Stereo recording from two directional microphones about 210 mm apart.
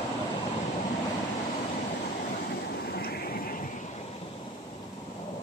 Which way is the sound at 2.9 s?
50° left (ahead or behind).